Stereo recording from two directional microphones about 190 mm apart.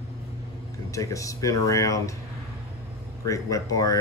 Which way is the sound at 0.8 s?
15° left (ahead or behind).